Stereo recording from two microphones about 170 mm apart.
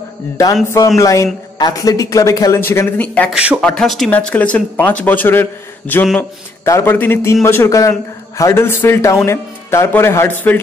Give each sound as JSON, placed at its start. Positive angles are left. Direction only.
{"t": 0.7, "sound": "a man's voice", "side_deg": 20}